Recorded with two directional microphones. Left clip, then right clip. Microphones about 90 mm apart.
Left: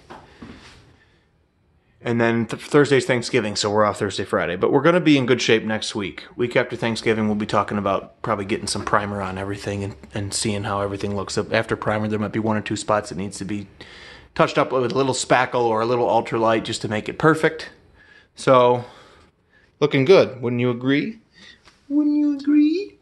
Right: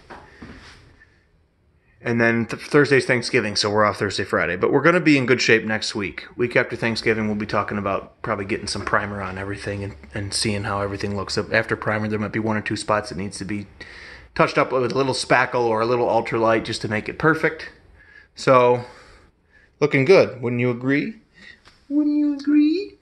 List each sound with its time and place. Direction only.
2.0 s speech: 10° left (ahead or behind)
7.1 s speech: 30° left (ahead or behind)
8.8 s speech: 35° left (ahead or behind)
10.2 s speech: 10° left (ahead or behind)
17.1 s speech: 40° left (ahead or behind)
18.4 s speech: 5° left (ahead or behind)